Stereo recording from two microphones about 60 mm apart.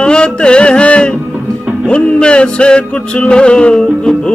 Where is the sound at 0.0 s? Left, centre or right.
Centre.